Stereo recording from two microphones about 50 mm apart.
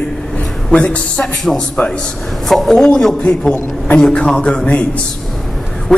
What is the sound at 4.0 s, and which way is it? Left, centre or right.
Speech, centre.